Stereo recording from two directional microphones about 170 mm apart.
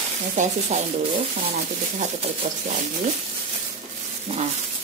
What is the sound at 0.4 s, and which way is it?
Speech, 40° right (ahead or behind).